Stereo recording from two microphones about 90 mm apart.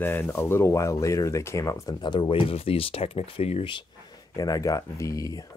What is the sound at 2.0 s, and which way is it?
Speech, 60° left (ahead or behind).